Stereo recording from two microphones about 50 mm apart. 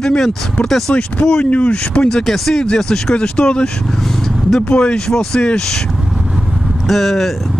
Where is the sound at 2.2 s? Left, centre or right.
Centre.